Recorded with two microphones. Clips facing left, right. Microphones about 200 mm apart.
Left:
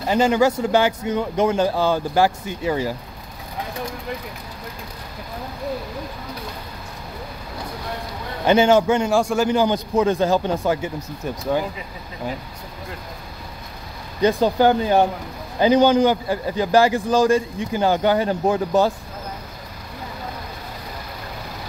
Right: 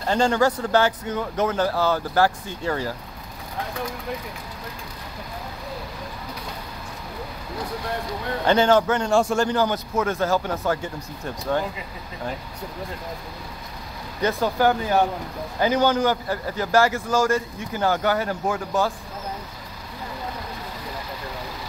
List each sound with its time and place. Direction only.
0.0 s a man's voice: 10° left (ahead or behind)
8.5 s a man's voice: 10° left (ahead or behind)
9.5 s a man's voice: 15° left (ahead or behind)
14.2 s a man's voice: 20° left (ahead or behind)